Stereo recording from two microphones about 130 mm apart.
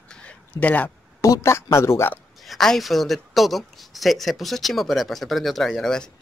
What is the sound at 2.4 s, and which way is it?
Speech, centre (ahead or behind).